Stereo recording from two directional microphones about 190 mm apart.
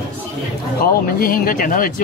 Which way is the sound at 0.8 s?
50° left (ahead or behind).